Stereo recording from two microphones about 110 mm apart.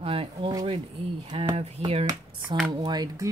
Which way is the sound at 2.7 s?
40° right (ahead or behind).